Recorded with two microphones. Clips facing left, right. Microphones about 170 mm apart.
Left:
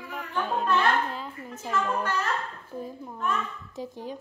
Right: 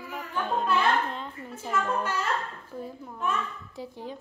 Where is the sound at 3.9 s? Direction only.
15° left (ahead or behind).